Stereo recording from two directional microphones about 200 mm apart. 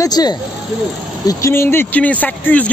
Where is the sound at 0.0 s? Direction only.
20° left (ahead or behind).